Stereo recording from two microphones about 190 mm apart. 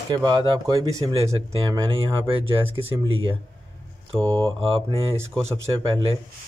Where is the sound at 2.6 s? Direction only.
30° right (ahead or behind).